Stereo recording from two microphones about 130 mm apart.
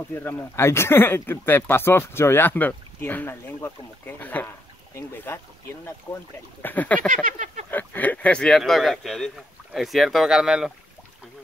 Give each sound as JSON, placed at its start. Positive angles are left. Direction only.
{"t": 0.1, "sound": "speech", "side_deg": 15}
{"t": 6.6, "sound": "speech", "side_deg": 15}
{"t": 7.2, "sound": "a sound", "side_deg": -70}
{"t": 7.7, "sound": "speech", "side_deg": 15}